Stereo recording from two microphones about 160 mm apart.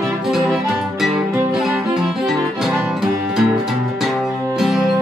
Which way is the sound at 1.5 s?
5° right (ahead or behind).